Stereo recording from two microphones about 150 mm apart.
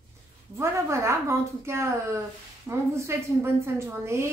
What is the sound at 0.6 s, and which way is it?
A woman's voice, 20° right (ahead or behind).